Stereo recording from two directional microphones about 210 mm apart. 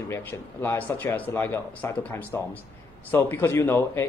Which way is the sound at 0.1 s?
10° left (ahead or behind).